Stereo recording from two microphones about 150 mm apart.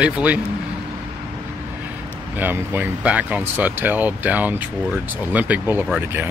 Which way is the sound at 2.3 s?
15° right (ahead or behind).